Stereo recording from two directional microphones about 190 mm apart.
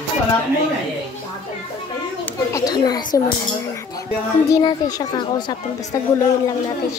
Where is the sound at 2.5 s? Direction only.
20° left (ahead or behind).